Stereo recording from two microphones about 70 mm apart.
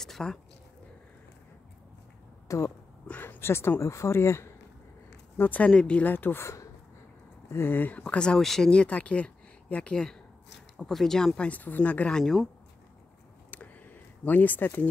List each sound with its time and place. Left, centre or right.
0.0 s speech: centre
2.4 s speech: left
3.1 s speech: left
5.4 s speech: left
6.1 s speech: left
8.0 s speech: centre
11.4 s speech: left
12.2 s speech: centre
13.5 s a sound: left